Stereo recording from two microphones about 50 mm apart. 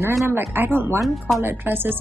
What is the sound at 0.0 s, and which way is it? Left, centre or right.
A woman's voice, right.